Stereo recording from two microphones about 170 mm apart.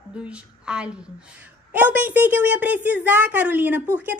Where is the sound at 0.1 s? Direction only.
5° right (ahead or behind).